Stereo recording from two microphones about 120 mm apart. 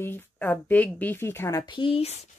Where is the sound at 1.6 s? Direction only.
45° left (ahead or behind); by 2.3 s 60° left (ahead or behind).